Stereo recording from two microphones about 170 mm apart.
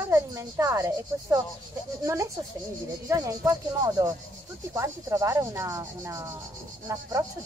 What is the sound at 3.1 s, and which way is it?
Speech, 20° right (ahead or behind).